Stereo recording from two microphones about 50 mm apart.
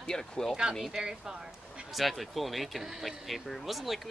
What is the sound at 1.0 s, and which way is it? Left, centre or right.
Speech, centre.